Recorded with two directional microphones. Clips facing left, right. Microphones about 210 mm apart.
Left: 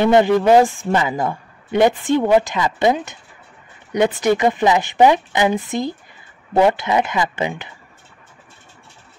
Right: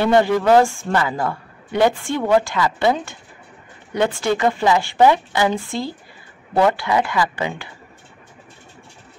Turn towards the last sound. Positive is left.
turn(degrees=20)  # may be behind; listen again after turning